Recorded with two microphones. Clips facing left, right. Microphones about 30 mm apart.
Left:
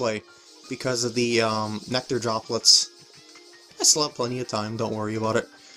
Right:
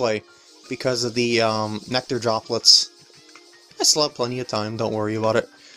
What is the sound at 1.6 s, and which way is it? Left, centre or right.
Speech, centre.